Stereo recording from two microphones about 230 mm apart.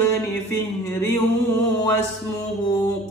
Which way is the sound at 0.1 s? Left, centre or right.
Centre.